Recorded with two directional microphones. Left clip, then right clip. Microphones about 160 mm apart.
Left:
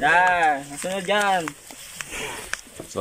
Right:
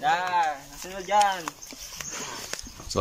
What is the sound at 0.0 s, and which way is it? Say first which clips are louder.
Speech: left 6 dB; 60° left (ahead or behind).